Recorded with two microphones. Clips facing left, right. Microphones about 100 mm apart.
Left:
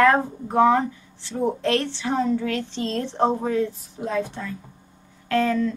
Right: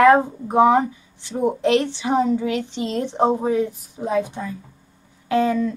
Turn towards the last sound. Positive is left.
turn(degrees=-15)  # may be behind; listen again after turning